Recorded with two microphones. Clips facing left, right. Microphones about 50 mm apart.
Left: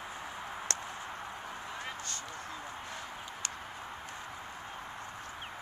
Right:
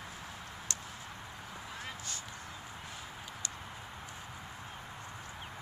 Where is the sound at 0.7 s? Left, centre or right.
Left.